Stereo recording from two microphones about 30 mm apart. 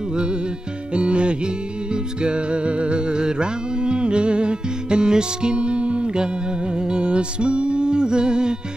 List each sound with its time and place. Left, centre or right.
0.1 s music: right